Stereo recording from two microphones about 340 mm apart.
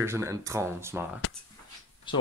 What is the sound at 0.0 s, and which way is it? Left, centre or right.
Speech, centre.